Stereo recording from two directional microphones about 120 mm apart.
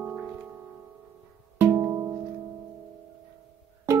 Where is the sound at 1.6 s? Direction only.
25° right (ahead or behind).